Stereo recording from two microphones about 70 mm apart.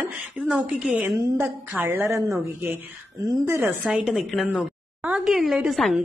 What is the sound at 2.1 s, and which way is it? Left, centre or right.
Speech, right.